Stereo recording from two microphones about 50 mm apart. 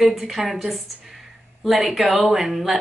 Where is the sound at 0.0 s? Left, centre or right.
Centre.